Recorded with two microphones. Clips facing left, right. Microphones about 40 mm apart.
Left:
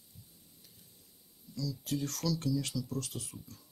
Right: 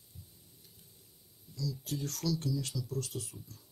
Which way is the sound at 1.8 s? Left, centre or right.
Left.